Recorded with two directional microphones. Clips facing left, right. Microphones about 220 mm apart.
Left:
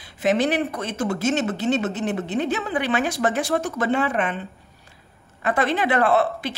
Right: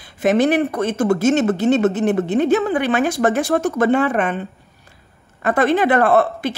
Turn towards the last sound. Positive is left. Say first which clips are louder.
# right 4 dB
turn(degrees=-50)  # may be behind; listen again after turning